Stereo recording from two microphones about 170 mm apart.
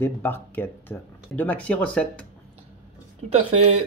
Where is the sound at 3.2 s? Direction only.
35° right (ahead or behind).